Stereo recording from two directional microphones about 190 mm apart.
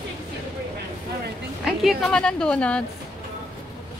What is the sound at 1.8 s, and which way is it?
Speech, centre (ahead or behind).